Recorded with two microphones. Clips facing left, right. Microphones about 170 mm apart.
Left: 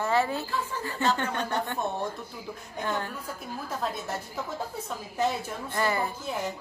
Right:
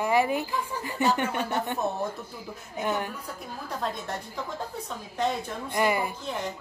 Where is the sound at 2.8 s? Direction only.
15° right (ahead or behind).